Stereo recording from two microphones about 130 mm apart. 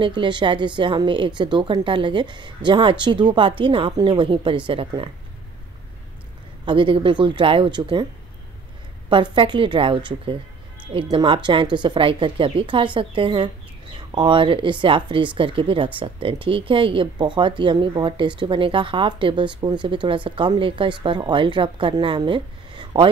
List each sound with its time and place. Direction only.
0.0 s speech: 40° right (ahead or behind)
6.6 s speech: 40° right (ahead or behind)
9.1 s a woman's voice: 40° right (ahead or behind)